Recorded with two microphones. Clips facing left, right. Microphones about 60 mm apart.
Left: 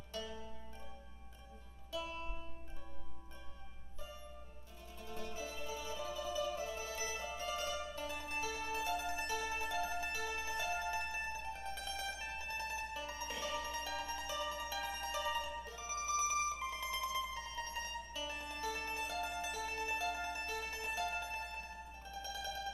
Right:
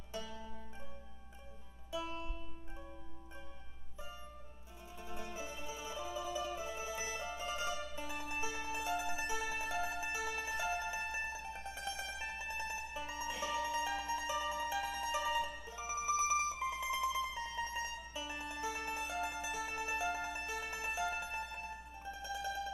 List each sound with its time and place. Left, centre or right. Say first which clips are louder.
4.9 s music: right 1 dB; centre
10.1 s mandolin: right 1 dB; centre